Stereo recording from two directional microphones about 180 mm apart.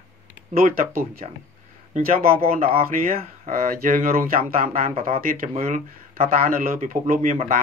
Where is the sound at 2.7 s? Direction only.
55° right (ahead or behind).